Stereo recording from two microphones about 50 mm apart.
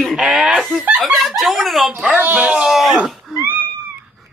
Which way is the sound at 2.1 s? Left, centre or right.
Right.